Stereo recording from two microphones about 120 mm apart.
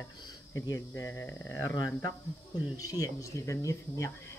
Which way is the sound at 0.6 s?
25° left (ahead or behind).